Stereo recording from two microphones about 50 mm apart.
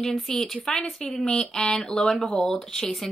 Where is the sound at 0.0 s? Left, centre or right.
Centre.